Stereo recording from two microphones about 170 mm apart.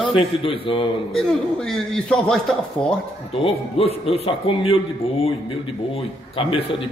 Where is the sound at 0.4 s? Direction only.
30° left (ahead or behind).